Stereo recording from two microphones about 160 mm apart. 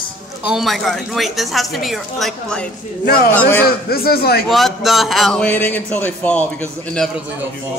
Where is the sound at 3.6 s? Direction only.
70° left (ahead or behind).